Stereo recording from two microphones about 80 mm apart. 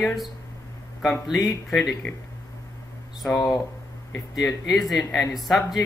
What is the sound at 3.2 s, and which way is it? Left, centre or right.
Speech, centre.